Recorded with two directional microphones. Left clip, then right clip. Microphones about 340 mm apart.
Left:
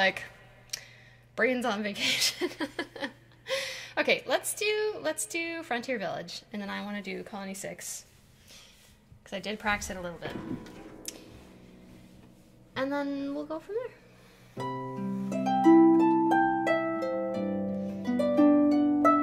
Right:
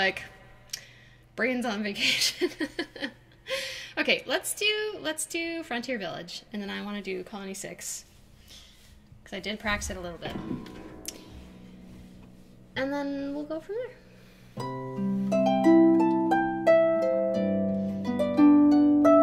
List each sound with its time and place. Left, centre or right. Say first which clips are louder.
1.3 s speech: left 1 dB; left
3.5 s a sound: even; centre
4.6 s speech: right 1 dB; left
5.0 s speech: left 1 dB; centre
5.3 s speech: right 1 dB; left
6.2 s speech: right 1 dB; centre
7.1 s speech: right 4 dB; left
7.3 s speech: right 1 dB; centre
9.3 s speech: even; left
11.0 s tick-tock: even; left
12.9 s speech: even; left
14.6 s harp: right 1 dB; centre